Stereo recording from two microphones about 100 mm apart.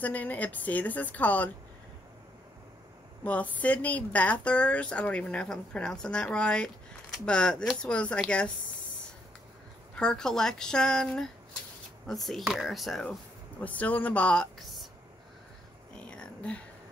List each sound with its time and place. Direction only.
0.0 s a woman's voice: 15° left (ahead or behind)
3.3 s a woman's voice: 15° left (ahead or behind)
9.9 s a woman's voice: 5° left (ahead or behind)
13.6 s speech: 15° left (ahead or behind)
16.1 s a sound: 10° left (ahead or behind)